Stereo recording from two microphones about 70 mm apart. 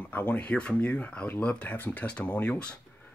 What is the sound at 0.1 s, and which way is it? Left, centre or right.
Speech, left.